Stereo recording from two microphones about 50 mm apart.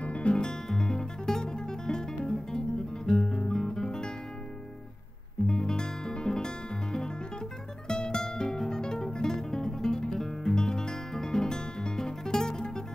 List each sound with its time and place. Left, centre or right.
0.0 s music: left
0.7 s guitar: centre
5.5 s music: centre